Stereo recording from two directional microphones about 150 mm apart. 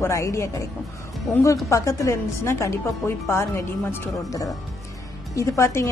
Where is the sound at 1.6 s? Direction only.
20° left (ahead or behind).